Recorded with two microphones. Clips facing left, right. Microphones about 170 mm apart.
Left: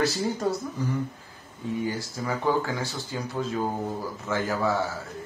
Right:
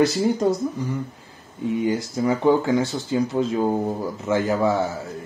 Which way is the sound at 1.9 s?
20° right (ahead or behind).